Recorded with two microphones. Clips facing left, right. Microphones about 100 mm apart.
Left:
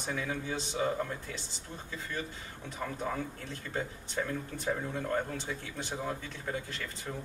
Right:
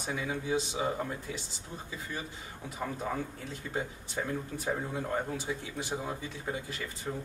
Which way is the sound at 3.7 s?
10° right (ahead or behind).